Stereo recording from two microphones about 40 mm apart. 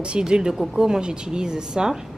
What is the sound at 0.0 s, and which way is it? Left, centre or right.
Speech, right.